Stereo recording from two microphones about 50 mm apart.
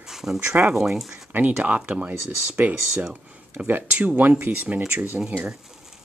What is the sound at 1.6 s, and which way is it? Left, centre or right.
Speech, right.